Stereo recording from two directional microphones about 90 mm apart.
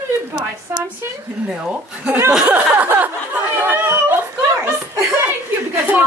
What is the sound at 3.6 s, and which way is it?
Chatter, 25° right (ahead or behind).